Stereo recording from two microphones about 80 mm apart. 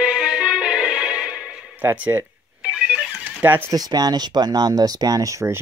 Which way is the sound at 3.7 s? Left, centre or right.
Right.